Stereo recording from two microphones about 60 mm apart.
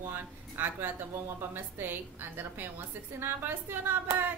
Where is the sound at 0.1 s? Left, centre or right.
Right.